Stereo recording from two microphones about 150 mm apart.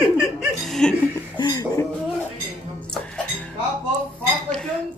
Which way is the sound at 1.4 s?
25° left (ahead or behind).